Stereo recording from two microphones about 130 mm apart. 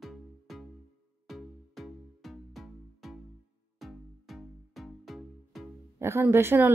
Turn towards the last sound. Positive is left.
turn(degrees=-20)  # may be behind; listen again after turning